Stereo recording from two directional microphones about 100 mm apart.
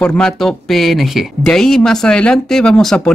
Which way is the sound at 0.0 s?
10° left (ahead or behind).